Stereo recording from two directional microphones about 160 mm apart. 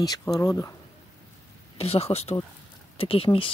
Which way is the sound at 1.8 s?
40° left (ahead or behind).